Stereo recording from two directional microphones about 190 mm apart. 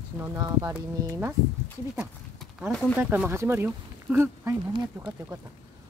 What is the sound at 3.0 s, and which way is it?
Speech, 10° right (ahead or behind).